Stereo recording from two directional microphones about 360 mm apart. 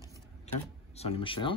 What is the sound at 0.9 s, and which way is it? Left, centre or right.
Speech, centre.